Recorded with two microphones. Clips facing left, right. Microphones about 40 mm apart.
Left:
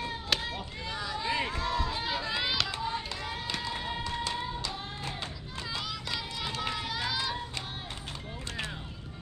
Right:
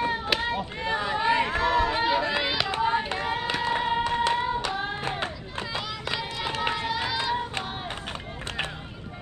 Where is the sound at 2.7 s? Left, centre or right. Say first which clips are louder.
Right 9 dB; right.